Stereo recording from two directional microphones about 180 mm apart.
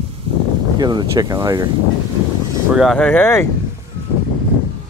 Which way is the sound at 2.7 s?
Centre (ahead or behind).